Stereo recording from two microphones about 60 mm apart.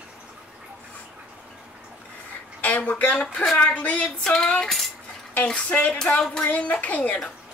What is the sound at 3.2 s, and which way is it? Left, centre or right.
Speech, centre.